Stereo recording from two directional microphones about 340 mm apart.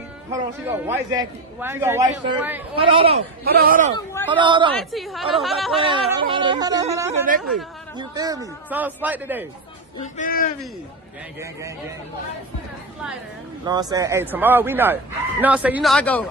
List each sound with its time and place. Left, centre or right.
0.3 s a man's voice: centre; by 3.9 s right
4.3 s a man's voice: centre
4.7 s a man's voice: centre
5.8 s a man's voice: centre
10.1 s speech: left
11.3 s a man's voice: centre
13.7 s a man's voice: centre